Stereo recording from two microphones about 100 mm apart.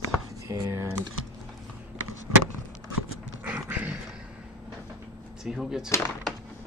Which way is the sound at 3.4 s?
15° right (ahead or behind).